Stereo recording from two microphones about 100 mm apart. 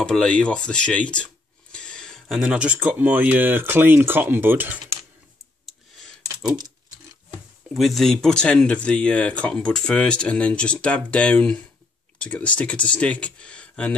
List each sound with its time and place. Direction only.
0.0 s speech: 10° left (ahead or behind)
2.4 s speech: 10° right (ahead or behind)
7.7 s speech: centre (ahead or behind)